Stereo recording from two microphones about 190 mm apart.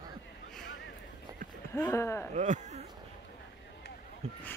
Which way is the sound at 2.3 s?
40° right (ahead or behind).